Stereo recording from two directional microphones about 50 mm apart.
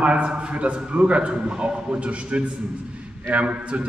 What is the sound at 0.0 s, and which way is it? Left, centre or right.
A man's voice, right.